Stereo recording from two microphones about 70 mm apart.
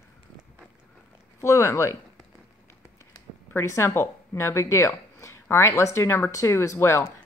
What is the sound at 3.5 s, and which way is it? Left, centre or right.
Speech, left.